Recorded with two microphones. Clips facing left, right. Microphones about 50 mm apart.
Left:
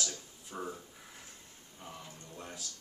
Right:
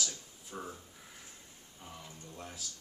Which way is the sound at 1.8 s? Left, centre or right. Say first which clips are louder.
Left 1 dB; centre.